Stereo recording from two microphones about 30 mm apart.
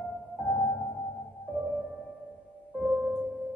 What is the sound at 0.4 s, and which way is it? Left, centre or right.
Music, left.